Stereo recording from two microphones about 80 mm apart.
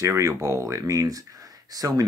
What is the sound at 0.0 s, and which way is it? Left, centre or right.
Speech, right.